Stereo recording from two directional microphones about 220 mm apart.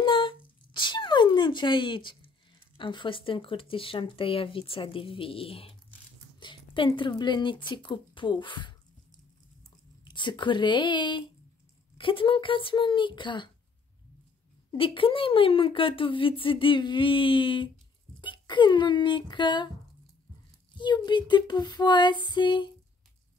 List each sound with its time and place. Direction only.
0.0 s a sound: 20° left (ahead or behind)
2.8 s a woman's voice: 20° left (ahead or behind)
10.0 s speech: 20° left (ahead or behind)
14.7 s speech: 25° left (ahead or behind)
20.7 s speech: 20° left (ahead or behind)